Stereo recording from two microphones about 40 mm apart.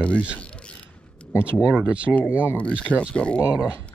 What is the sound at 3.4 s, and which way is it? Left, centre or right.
Speech, right.